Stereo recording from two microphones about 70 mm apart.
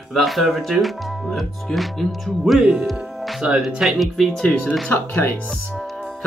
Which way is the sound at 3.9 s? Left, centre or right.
Centre.